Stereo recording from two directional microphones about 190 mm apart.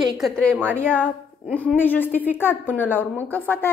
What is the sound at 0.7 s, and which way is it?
A woman's voice, 5° left (ahead or behind).